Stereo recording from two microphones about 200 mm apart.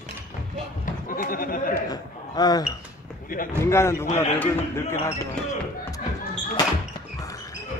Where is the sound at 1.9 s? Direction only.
20° left (ahead or behind).